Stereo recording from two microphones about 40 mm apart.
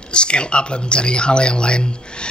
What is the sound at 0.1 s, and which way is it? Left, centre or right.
Speech, left.